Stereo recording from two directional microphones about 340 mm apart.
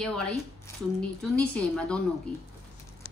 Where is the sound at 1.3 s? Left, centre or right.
Centre.